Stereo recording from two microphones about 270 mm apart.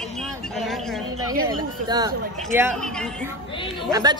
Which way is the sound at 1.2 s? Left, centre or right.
Centre.